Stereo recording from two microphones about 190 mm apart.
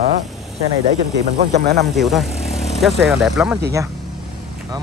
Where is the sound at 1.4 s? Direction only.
55° right (ahead or behind).